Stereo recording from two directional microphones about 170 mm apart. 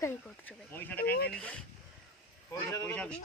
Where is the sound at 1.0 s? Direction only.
65° left (ahead or behind).